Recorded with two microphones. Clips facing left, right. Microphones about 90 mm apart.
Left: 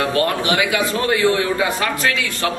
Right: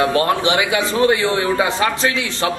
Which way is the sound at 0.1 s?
25° right (ahead or behind).